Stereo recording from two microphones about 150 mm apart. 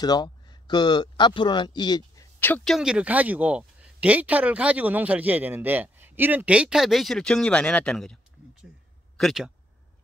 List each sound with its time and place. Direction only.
0.0 s speech: 30° left (ahead or behind)
2.4 s speech: 5° left (ahead or behind)